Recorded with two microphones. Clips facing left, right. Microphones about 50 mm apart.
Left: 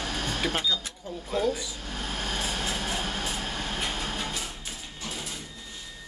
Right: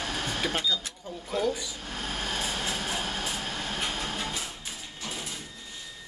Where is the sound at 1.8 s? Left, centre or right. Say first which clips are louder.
Even; centre.